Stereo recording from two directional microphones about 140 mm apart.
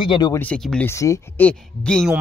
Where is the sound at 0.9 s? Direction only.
20° left (ahead or behind); by 2.1 s 5° left (ahead or behind).